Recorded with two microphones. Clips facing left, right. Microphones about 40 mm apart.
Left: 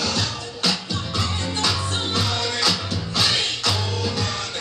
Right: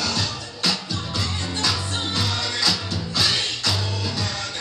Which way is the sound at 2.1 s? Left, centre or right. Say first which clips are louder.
Left 2 dB; left.